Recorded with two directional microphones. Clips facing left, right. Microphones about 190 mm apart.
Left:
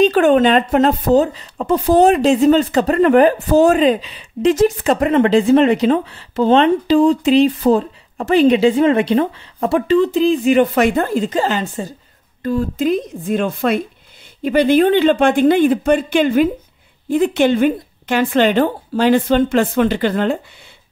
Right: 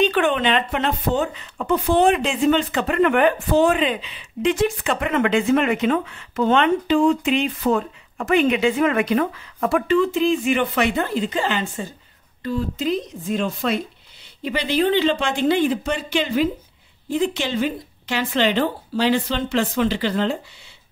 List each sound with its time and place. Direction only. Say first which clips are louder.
0.0 s speech: left 7 dB; 40° left (ahead or behind)